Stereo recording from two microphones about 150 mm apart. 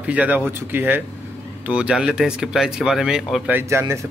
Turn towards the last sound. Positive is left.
turn(degrees=-15)  # may be behind; listen again after turning